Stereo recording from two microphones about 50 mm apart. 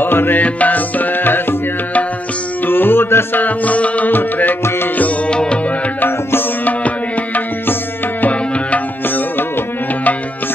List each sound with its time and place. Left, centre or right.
0.0 s music: left
0.4 s music: left
2.6 s music: left
3.3 s music: left
4.1 s music: left
5.3 s music: centre
5.9 s music: left
8.2 s music: left